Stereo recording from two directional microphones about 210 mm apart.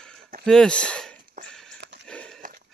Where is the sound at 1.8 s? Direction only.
55° right (ahead or behind).